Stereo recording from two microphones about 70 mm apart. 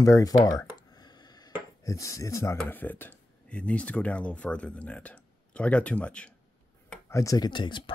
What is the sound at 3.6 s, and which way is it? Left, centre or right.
Speech, centre.